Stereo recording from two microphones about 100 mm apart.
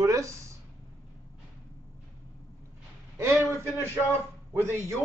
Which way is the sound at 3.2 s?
30° right (ahead or behind).